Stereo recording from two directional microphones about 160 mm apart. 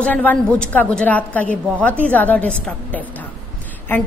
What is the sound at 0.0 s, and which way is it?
A woman's voice, 10° left (ahead or behind).